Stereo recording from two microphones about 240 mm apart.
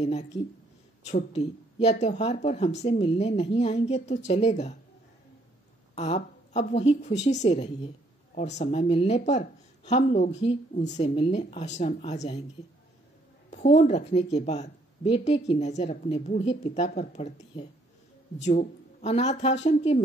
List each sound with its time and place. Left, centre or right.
1.0 s a woman's voice: left
5.9 s a woman's voice: left
13.5 s a woman's voice: left